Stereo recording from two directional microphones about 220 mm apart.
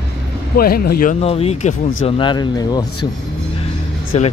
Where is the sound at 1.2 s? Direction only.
25° left (ahead or behind).